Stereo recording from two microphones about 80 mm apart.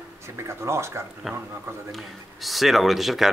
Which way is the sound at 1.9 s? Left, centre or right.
Centre.